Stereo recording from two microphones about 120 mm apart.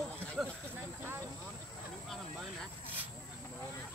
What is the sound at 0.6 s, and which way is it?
Speech, 15° right (ahead or behind).